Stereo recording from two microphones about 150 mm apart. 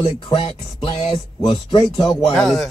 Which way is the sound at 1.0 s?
35° left (ahead or behind).